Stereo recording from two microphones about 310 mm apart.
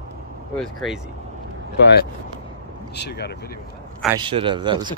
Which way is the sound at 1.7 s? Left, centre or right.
Left.